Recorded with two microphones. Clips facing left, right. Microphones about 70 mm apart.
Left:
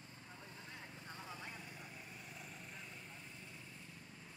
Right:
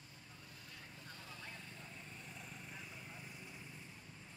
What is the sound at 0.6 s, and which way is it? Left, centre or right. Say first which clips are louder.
Vehicle: left 1 dB; left.